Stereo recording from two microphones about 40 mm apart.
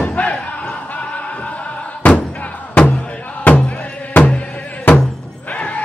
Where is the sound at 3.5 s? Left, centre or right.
Left.